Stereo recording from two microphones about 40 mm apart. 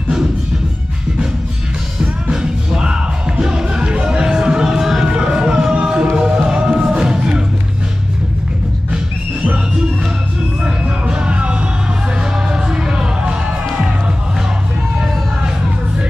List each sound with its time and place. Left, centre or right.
2.3 s music: centre
5.0 s music: right
11.1 s music: right